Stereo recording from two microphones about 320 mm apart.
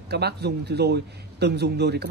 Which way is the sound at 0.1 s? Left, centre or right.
Right.